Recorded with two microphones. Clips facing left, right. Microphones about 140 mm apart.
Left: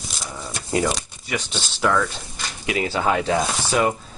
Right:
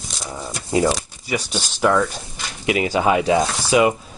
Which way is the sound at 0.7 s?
20° right (ahead or behind).